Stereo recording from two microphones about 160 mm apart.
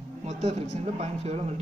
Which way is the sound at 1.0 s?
40° right (ahead or behind).